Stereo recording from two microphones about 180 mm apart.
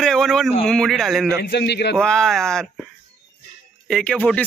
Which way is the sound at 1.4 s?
70° left (ahead or behind).